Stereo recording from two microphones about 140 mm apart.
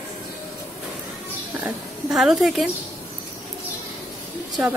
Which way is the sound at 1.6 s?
5° right (ahead or behind).